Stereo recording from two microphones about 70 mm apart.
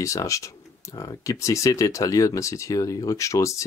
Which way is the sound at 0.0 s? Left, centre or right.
Left.